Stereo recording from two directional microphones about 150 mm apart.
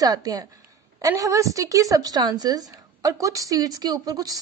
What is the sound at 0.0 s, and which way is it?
A woman's voice, 25° right (ahead or behind).